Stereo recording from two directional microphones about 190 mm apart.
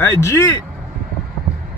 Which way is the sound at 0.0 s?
15° left (ahead or behind).